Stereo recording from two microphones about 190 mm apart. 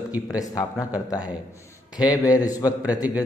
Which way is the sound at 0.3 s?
20° left (ahead or behind).